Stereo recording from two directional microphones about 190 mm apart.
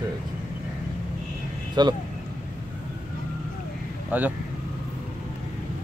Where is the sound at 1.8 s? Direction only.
20° right (ahead or behind).